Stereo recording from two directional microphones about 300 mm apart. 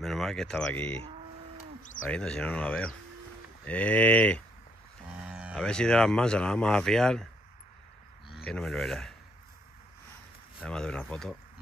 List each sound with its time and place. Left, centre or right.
0.0 s speech: centre
2.0 s speech: centre
8.5 s speech: centre
10.6 s speech: centre